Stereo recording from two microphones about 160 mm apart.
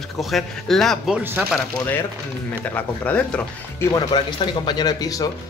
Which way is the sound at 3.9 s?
25° left (ahead or behind).